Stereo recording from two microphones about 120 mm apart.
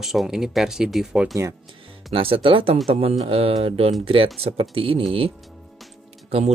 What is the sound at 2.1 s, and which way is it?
Speech, 50° right (ahead or behind).